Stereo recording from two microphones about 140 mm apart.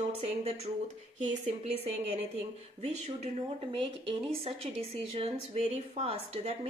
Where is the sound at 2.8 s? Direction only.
50° right (ahead or behind).